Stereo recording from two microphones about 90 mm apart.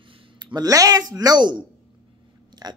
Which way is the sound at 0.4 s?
55° right (ahead or behind).